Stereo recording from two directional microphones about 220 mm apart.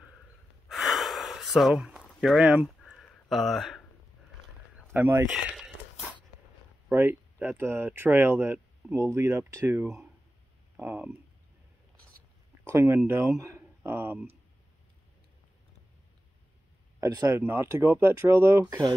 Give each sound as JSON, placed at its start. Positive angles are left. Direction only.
{"t": 0.7, "sound": "gasp", "side_deg": 0}
{"t": 4.7, "sound": "a sound", "side_deg": -10}
{"t": 6.9, "sound": "speech", "side_deg": -10}
{"t": 12.6, "sound": "speech", "side_deg": -10}
{"t": 17.0, "sound": "speech", "side_deg": -15}